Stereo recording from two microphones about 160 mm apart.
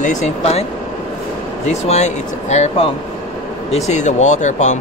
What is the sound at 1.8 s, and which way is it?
Speech, 45° left (ahead or behind).